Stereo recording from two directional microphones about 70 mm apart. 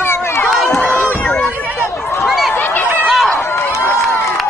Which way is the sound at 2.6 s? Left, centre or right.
Left.